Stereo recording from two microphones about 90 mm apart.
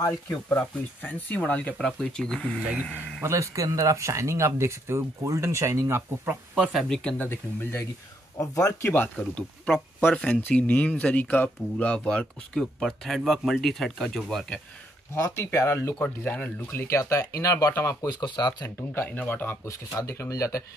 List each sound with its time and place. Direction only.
0.5 s speech: 20° left (ahead or behind)
2.6 s a man's voice: 15° right (ahead or behind)
3.2 s speech: 30° right (ahead or behind)
6.7 s speech: 5° left (ahead or behind)
7.2 s speech: 25° left (ahead or behind)
9.1 s speech: 15° left (ahead or behind)
12.8 s speech: centre (ahead or behind)
15.1 s speech: 35° left (ahead or behind)
16.0 s speech: 15° left (ahead or behind)
16.8 s speech: 35° left (ahead or behind)
18.2 s speech: 55° left (ahead or behind)
18.6 s speech: 20° left (ahead or behind)
20.0 s speech: 35° left (ahead or behind)